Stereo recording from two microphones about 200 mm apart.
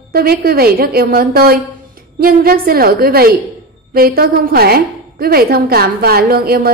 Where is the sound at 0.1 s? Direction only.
50° right (ahead or behind).